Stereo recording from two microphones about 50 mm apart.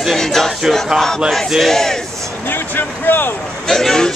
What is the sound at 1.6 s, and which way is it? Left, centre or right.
Speech, centre.